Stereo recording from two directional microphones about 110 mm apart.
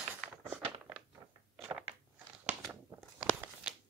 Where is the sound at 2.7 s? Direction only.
10° right (ahead or behind).